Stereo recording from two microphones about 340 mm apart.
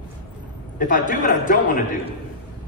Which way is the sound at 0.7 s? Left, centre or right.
Left.